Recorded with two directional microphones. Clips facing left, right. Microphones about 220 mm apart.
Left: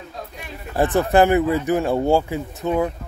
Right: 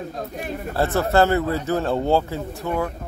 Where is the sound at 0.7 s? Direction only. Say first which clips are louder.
Left 3 dB; 15° left (ahead or behind).